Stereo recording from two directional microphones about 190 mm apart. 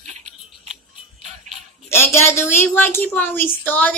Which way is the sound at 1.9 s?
15° left (ahead or behind).